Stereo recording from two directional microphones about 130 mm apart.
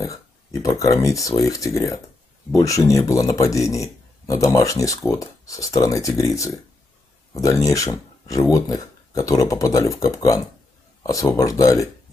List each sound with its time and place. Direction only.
0.0 s speech: 25° left (ahead or behind)